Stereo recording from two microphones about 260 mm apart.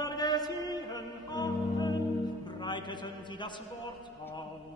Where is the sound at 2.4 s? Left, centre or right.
Centre.